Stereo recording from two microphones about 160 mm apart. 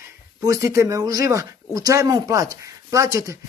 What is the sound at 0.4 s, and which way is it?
Speech, 20° right (ahead or behind).